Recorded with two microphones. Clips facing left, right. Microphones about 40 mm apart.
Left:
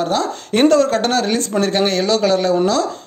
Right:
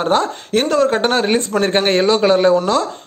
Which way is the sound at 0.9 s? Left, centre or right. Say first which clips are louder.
Right 2 dB; right.